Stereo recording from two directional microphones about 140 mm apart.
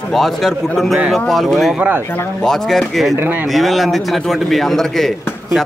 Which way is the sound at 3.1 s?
15° right (ahead or behind).